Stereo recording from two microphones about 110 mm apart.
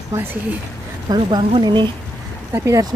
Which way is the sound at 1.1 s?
40° right (ahead or behind).